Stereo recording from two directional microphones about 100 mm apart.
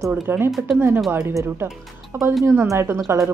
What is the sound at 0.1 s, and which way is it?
Speech, 20° right (ahead or behind).